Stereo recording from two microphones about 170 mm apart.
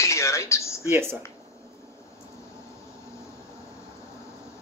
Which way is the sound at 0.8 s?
15° right (ahead or behind).